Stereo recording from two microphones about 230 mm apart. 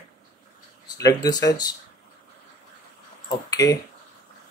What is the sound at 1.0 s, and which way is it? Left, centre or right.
Speech, centre.